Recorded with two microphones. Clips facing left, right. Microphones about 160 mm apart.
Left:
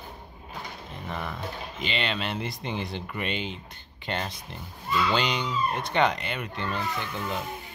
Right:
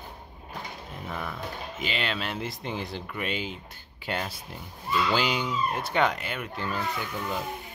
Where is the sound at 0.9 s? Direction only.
5° right (ahead or behind).